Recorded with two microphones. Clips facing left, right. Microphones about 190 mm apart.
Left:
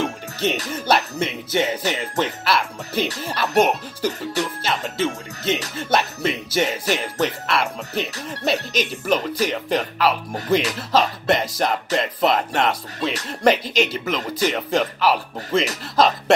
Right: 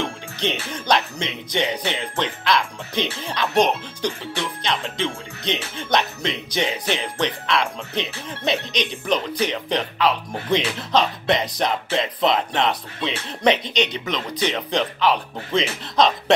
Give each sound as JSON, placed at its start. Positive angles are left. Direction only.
{"t": 0.0, "sound": "music", "side_deg": 5}
{"t": 0.7, "sound": "speech", "side_deg": 5}
{"t": 4.2, "sound": "speech", "side_deg": 40}
{"t": 4.6, "sound": "speech", "side_deg": 5}